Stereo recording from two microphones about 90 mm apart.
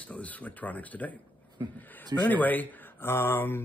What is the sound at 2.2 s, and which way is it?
A man's voice, 20° left (ahead or behind).